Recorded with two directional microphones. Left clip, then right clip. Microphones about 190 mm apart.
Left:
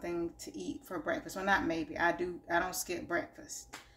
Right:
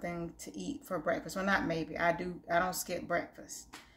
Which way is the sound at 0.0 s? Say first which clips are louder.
Left 2 dB; 15° right (ahead or behind).